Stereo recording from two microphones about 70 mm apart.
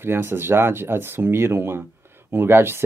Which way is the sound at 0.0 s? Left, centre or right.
Right.